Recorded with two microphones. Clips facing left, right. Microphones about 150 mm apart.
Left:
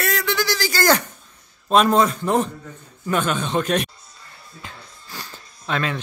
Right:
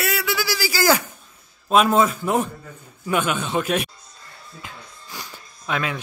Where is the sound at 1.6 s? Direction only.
5° right (ahead or behind).